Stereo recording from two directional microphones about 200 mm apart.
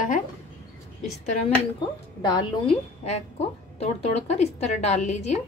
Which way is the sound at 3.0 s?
30° left (ahead or behind).